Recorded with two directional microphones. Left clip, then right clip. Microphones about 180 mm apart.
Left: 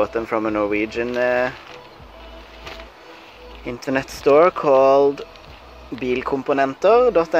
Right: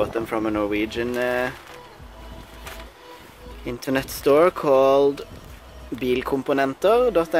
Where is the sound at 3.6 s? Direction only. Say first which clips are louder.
Left 2 dB; 20° right (ahead or behind).